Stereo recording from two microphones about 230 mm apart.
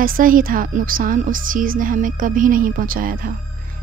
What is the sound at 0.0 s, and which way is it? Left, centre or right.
A woman's voice, right.